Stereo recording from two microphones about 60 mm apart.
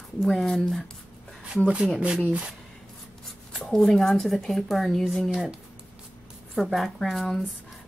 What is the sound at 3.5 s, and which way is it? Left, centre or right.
Speech, centre.